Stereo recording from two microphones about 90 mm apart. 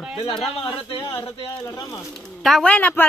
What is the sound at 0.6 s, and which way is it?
Speech, 70° left (ahead or behind).